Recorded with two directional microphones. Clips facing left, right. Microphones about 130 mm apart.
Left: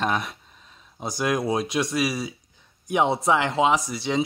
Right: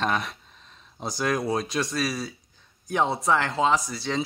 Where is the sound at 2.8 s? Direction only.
15° left (ahead or behind).